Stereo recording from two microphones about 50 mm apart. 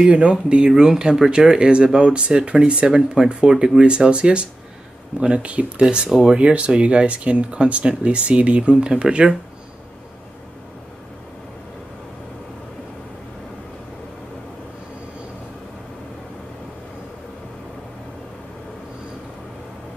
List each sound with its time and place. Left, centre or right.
0.0 s speech: centre